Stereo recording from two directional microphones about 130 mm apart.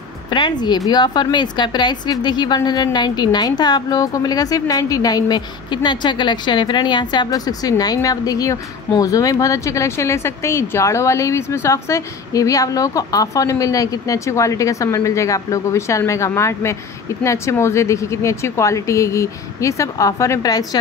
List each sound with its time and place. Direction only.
0.3 s a woman's voice: 35° left (ahead or behind)